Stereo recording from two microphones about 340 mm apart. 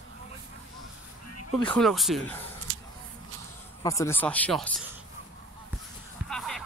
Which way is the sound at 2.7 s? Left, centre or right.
Right.